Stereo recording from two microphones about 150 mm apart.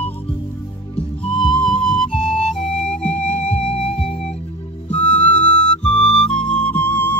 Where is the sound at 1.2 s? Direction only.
35° left (ahead or behind).